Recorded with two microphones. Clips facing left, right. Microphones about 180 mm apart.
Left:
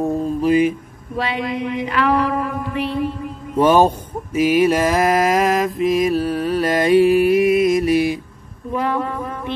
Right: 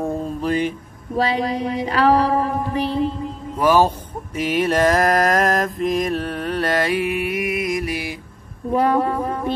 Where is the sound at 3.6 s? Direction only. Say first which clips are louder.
Left 3 dB; 20° left (ahead or behind).